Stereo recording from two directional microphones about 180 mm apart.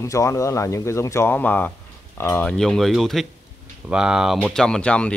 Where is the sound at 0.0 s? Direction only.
15° left (ahead or behind).